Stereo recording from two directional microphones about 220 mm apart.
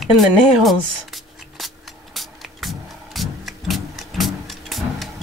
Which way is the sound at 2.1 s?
Centre (ahead or behind).